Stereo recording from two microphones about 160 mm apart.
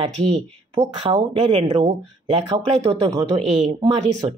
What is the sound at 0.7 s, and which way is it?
A woman's voice, 35° right (ahead or behind).